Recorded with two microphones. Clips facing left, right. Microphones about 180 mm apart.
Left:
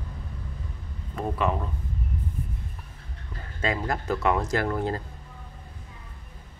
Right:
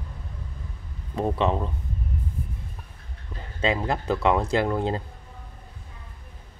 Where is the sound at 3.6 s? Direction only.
20° right (ahead or behind).